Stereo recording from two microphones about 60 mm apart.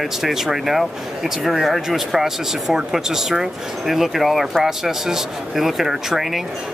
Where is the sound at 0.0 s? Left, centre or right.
Centre.